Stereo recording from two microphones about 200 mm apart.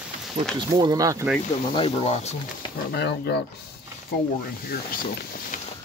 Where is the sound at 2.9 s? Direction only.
55° left (ahead or behind).